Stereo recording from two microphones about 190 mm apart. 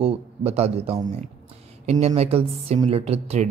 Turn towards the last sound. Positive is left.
turn(degrees=-35)  # may be behind; listen again after turning